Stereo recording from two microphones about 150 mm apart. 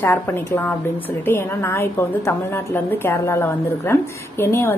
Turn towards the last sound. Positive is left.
turn(degrees=15)  # may be behind; listen again after turning